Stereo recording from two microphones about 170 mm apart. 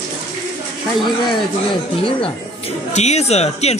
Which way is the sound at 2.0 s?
35° left (ahead or behind).